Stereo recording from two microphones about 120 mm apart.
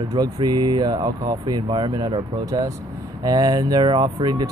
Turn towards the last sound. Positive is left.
turn(degrees=-40)  # may be behind; listen again after turning